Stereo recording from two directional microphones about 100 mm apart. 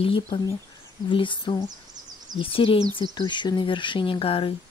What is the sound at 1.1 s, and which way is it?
Speech, 55° left (ahead or behind).